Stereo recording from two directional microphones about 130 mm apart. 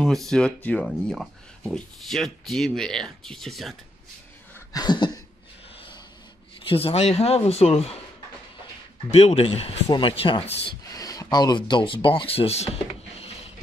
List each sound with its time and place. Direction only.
0.0 s speech: 5° left (ahead or behind)
4.7 s a sound: 35° left (ahead or behind)
6.6 s speech: 45° left (ahead or behind)
9.1 s speech: 55° left (ahead or behind); by 10.4 s 40° left (ahead or behind)
10.4 s speech: 50° left (ahead or behind)
10.9 s speech: 25° left (ahead or behind); by 12.7 s 55° left (ahead or behind)